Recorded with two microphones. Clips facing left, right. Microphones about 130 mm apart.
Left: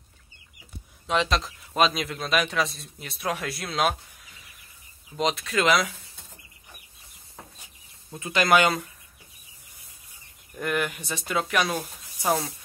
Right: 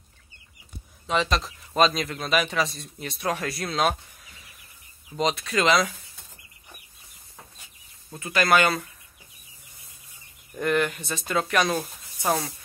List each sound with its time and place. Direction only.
1.0 s a man's voice: centre (ahead or behind)
8.1 s speech: 15° left (ahead or behind)
10.5 s a man's voice: 5° left (ahead or behind)